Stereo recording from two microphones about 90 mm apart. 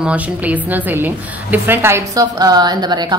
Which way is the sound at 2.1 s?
45° right (ahead or behind).